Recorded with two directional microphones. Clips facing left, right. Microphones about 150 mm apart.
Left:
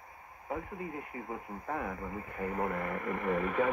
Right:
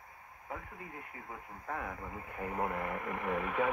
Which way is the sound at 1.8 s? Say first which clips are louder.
Left 4 dB; centre (ahead or behind).